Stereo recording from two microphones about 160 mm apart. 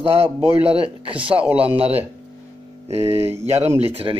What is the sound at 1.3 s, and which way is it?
Speech, 5° right (ahead or behind).